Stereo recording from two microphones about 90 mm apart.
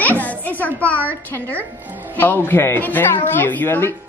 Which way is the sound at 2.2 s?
25° left (ahead or behind).